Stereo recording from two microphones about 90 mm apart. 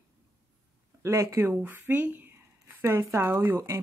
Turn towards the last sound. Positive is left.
turn(degrees=-30)  # may be behind; listen again after turning